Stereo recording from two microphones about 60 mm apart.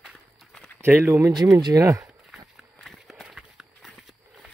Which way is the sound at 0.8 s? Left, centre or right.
Right.